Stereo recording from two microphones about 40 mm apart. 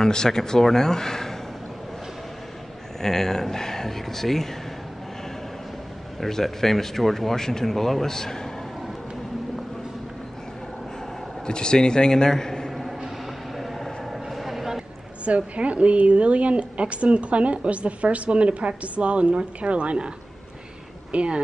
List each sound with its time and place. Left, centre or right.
0.0 s speech: centre
3.0 s speech: centre
6.2 s speech: centre
11.4 s a man's voice: left
13.6 s a sound: centre
15.2 s a woman's voice: right
21.1 s speech: right